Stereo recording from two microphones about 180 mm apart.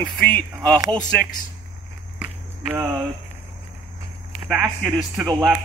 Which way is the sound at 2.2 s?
10° right (ahead or behind).